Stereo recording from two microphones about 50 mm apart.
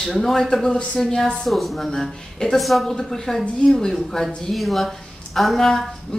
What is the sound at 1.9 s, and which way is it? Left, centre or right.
Speech, centre.